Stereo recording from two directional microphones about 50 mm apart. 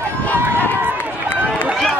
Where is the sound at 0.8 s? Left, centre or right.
Right.